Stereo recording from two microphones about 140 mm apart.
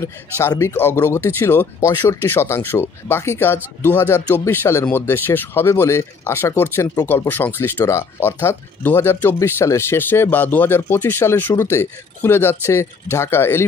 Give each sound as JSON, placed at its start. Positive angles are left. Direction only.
{"t": 0.0, "sound": "speech", "side_deg": 20}